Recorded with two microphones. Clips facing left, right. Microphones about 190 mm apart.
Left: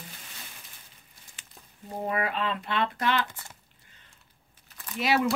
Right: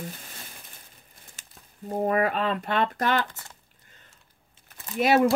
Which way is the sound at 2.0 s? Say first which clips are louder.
Right 5 dB; 45° right (ahead or behind).